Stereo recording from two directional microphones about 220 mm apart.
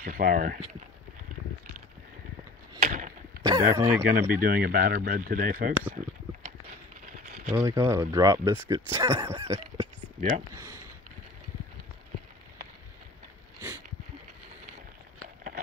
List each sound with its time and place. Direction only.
0.0 s speech: 40° right (ahead or behind)
2.8 s a sound: 35° right (ahead or behind)
3.4 s speech: 15° right (ahead or behind)
4.1 s speech: 40° right (ahead or behind)
7.1 s a sound: 40° right (ahead or behind)
7.6 s speech: 15° right (ahead or behind)